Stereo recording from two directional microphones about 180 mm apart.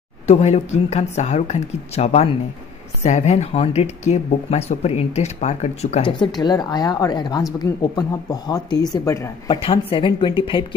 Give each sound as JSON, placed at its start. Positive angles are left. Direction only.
{"t": 0.3, "sound": "a woman's voice", "side_deg": 35}
{"t": 9.5, "sound": "a woman's voice", "side_deg": 30}